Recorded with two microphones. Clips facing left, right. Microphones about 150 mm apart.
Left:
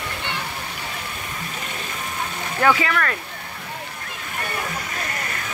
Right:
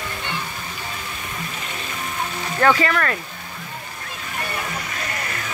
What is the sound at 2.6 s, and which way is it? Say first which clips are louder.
Speech: right 1 dB; 5° left (ahead or behind).